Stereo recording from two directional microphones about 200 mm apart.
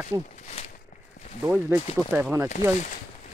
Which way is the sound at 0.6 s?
25° left (ahead or behind).